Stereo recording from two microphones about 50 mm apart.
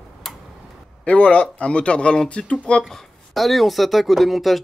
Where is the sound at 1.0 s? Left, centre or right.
Left.